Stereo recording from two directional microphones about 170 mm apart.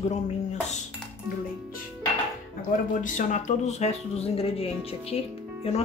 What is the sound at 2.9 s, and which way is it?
Speech, 50° left (ahead or behind).